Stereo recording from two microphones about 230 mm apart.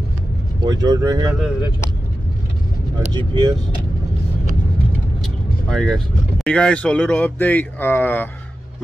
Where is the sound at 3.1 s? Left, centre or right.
Centre.